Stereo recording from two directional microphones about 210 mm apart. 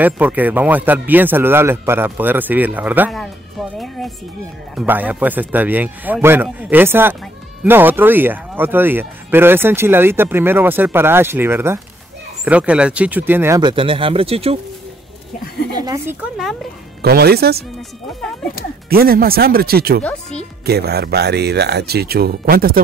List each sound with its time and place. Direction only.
0.0 s speech: 10° right (ahead or behind); by 14.6 s 25° right (ahead or behind)
15.7 s speech: 15° right (ahead or behind)
17.0 s speech: 50° right (ahead or behind)
18.9 s speech: 45° right (ahead or behind)